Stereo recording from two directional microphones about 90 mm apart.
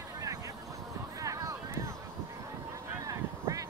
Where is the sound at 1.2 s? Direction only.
40° right (ahead or behind).